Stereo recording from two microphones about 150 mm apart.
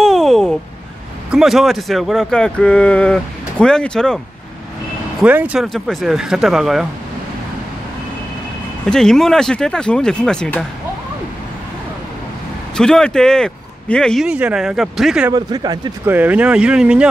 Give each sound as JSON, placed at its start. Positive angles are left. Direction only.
{"t": 0.0, "sound": "a sound", "side_deg": 0}
{"t": 1.3, "sound": "speech", "side_deg": 0}
{"t": 5.2, "sound": "speech", "side_deg": -10}
{"t": 5.6, "sound": "speech", "side_deg": 0}
{"t": 8.8, "sound": "speech", "side_deg": 5}
{"t": 12.7, "sound": "speech", "side_deg": 5}
{"t": 14.2, "sound": "speech", "side_deg": -5}
{"t": 15.3, "sound": "speech", "side_deg": -25}
{"t": 16.1, "sound": "speech", "side_deg": -10}